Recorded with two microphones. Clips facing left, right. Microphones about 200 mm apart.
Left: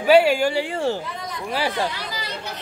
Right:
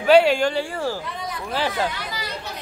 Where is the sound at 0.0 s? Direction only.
5° left (ahead or behind).